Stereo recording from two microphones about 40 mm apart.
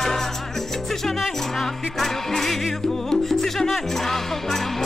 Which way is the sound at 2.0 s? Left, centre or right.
Centre.